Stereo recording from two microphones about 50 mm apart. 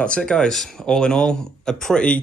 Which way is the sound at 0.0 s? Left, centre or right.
Centre.